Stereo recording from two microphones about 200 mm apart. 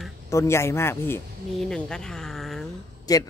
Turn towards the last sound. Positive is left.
turn(degrees=20)  # may be behind; listen again after turning